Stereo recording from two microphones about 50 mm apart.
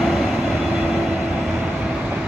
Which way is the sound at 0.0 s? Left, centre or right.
Centre.